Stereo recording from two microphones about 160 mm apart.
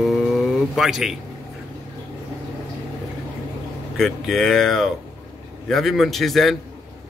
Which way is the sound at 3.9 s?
Centre (ahead or behind).